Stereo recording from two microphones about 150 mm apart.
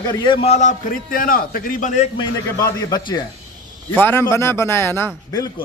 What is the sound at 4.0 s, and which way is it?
A man's voice, 15° left (ahead or behind).